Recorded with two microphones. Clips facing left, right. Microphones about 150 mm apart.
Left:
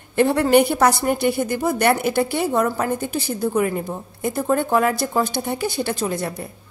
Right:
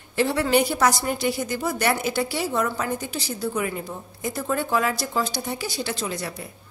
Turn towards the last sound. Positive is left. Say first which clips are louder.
# left 6 dB
turn(degrees=50)  # may be behind; listen again after turning